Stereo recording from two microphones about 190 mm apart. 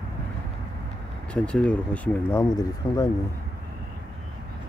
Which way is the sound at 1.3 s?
5° left (ahead or behind).